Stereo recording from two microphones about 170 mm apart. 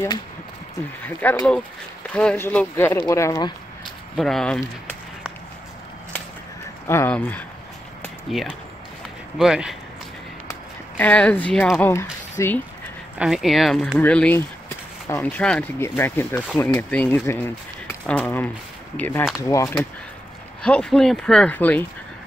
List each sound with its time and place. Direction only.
1.0 s speech: 5° left (ahead or behind)
4.2 s speech: 5° left (ahead or behind)
6.9 s speech: 10° left (ahead or behind)
10.5 s speech: 10° left (ahead or behind)
13.2 s speech: centre (ahead or behind); by 19.9 s 20° left (ahead or behind)
20.6 s speech: 5° left (ahead or behind)